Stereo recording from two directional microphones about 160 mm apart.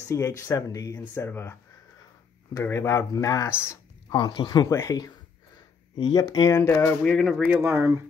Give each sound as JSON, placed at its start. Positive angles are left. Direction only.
{"t": 0.1, "sound": "speech", "side_deg": 20}
{"t": 2.5, "sound": "speech", "side_deg": 15}
{"t": 4.1, "sound": "speech", "side_deg": 25}